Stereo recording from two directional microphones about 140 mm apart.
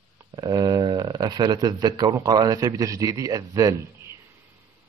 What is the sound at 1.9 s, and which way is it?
A man's voice, 30° right (ahead or behind).